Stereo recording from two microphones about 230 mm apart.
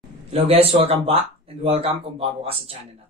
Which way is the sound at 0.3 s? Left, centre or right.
Right.